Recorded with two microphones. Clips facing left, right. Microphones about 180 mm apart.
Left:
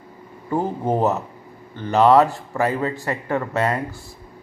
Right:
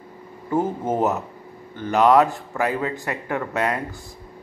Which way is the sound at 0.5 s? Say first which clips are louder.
Left 1 dB; 15° left (ahead or behind).